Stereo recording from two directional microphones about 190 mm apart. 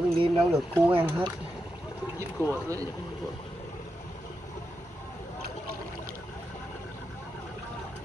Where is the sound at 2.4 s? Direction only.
10° left (ahead or behind).